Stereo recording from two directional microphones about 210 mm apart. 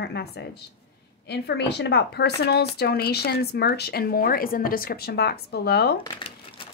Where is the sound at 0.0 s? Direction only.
55° left (ahead or behind).